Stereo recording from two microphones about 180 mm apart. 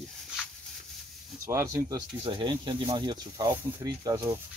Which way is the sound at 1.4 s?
15° right (ahead or behind).